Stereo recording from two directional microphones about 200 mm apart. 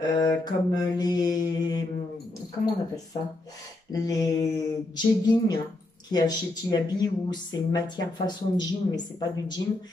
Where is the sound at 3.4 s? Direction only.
20° left (ahead or behind).